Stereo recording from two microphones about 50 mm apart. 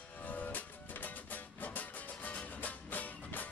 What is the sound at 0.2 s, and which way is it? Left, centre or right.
Music, left.